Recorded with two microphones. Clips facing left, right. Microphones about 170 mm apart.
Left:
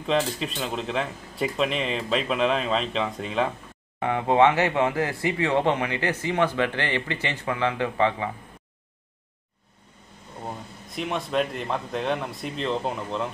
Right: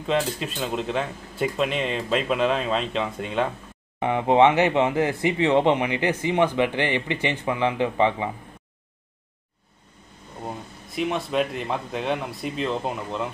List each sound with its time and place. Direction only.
0.0 s speech: centre (ahead or behind)
4.0 s speech: 20° right (ahead or behind)
11.0 s speech: centre (ahead or behind)